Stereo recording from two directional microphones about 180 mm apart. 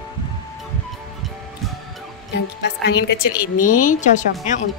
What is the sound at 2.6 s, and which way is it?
Speech, 70° left (ahead or behind).